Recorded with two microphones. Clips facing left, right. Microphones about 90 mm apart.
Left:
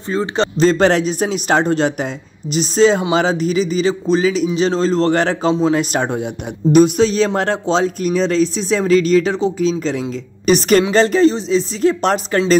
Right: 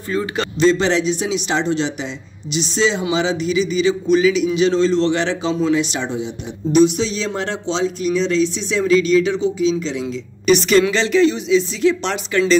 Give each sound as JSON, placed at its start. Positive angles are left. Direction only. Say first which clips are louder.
{"t": 0.1, "sound": "speech", "louder": "left 4 dB", "side_deg": 30}
{"t": 0.7, "sound": "speech", "louder": "left 1 dB", "side_deg": 50}